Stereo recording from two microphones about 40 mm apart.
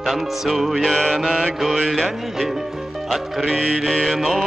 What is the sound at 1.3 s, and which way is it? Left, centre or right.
Mantra, left.